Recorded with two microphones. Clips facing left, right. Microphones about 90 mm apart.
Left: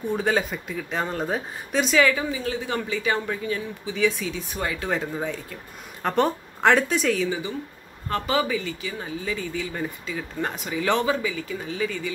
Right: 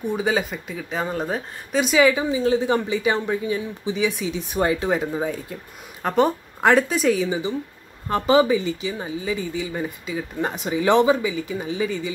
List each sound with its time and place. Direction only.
0.1 s speech: 5° right (ahead or behind)
4.6 s speech: 25° right (ahead or behind)
4.8 s speech: 15° right (ahead or behind)
8.1 s speech: 20° right (ahead or behind)